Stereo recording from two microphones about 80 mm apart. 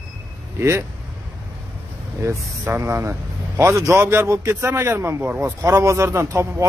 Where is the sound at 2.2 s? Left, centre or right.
Right.